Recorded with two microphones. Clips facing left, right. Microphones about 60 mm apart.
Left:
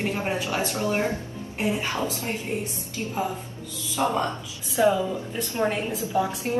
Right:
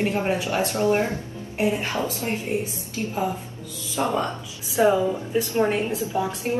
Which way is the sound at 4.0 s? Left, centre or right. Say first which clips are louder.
Even; centre.